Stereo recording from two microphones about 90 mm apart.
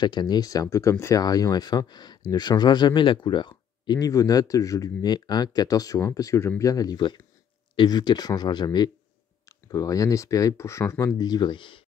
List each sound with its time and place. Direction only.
0.0 s speech: 50° left (ahead or behind); by 1.2 s 35° left (ahead or behind)
1.2 s speech: 45° left (ahead or behind)
9.5 s speech: 40° left (ahead or behind)
11.1 s speech: 50° left (ahead or behind); by 11.8 s 65° left (ahead or behind)